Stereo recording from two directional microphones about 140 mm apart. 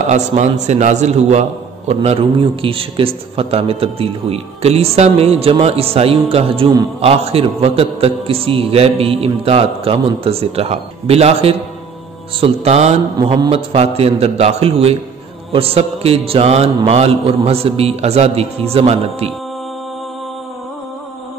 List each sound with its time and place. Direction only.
0.1 s a man's voice: 55° right (ahead or behind)